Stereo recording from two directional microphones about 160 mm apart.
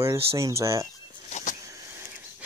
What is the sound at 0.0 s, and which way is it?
Speech, 15° right (ahead or behind).